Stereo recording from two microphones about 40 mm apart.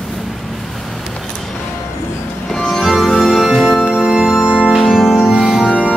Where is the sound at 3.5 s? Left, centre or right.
Centre.